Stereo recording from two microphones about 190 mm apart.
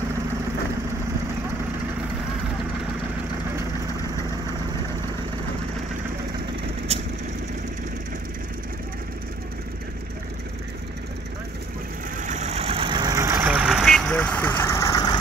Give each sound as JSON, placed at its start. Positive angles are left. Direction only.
{"t": 6.9, "sound": "vehicle", "side_deg": -35}
{"t": 12.2, "sound": "vehicle", "side_deg": -40}